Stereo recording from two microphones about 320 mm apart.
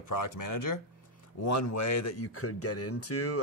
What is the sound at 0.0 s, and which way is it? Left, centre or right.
Speech, left.